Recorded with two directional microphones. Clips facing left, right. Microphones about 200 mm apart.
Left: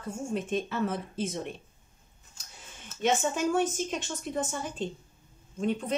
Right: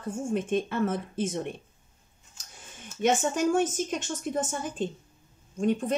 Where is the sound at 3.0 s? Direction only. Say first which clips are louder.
Right 2 dB; 50° right (ahead or behind).